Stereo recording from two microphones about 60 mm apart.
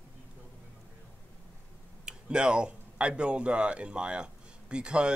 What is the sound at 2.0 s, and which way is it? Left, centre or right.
Speech, centre.